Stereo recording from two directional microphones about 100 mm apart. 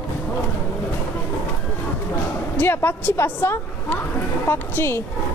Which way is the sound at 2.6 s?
20° left (ahead or behind).